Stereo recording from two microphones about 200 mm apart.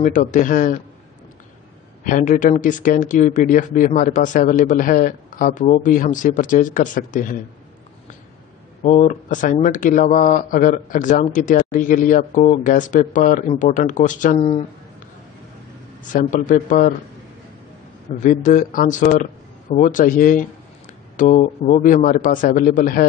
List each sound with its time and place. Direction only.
0.0 s speech: 40° left (ahead or behind)
2.0 s speech: 40° left (ahead or behind)
8.8 s speech: 35° left (ahead or behind)
16.1 s speech: 40° left (ahead or behind)
18.2 s speech: 40° left (ahead or behind)